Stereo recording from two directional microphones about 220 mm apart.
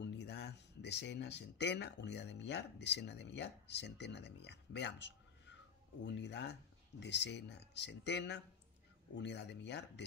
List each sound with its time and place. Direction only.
0.0 s speech: 50° left (ahead or behind)